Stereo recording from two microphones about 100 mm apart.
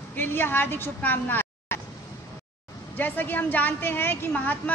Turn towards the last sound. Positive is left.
turn(degrees=20)  # may be behind; listen again after turning